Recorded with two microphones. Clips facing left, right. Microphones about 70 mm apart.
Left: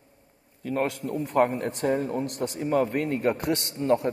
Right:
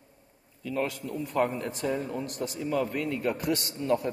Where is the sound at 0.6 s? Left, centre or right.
Left.